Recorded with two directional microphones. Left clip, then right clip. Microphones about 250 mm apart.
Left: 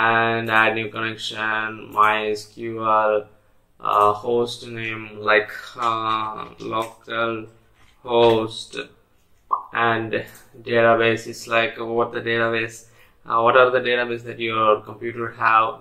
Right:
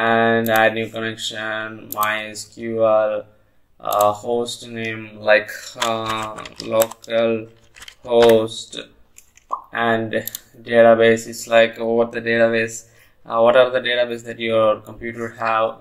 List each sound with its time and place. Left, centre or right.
0.0 s speech: right